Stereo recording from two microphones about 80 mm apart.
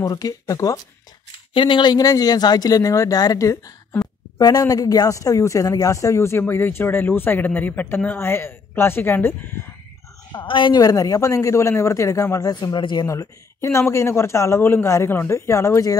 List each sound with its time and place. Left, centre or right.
0.0 s speech: left
1.5 s a woman's voice: left
2.0 s speech: left
10.3 s a woman's voice: left
10.8 s speech: left
12.4 s a man's voice: left
13.0 s speech: left